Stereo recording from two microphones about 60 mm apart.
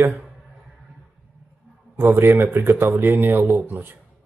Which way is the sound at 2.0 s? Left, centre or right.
Right.